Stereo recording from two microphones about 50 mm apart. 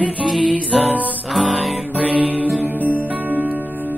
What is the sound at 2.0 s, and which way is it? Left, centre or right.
Music, right.